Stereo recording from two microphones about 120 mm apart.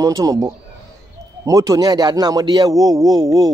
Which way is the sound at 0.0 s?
30° right (ahead or behind).